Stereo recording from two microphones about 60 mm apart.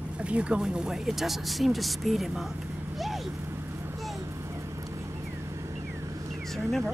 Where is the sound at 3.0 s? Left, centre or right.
Centre.